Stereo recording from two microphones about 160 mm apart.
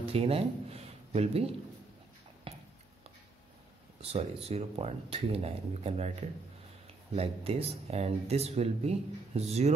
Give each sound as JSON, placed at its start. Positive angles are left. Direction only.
{"t": 0.0, "sound": "speech", "side_deg": -35}
{"t": 2.5, "sound": "a sound", "side_deg": -35}
{"t": 4.0, "sound": "speech", "side_deg": -40}
{"t": 7.2, "sound": "speech", "side_deg": -40}